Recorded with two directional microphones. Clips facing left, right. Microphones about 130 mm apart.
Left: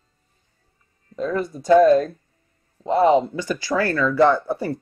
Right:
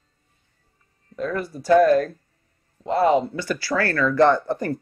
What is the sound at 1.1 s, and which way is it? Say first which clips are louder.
Speech: left 3 dB; 25° left (ahead or behind).